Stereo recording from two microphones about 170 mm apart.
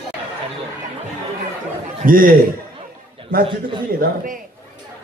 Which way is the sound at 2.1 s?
55° right (ahead or behind).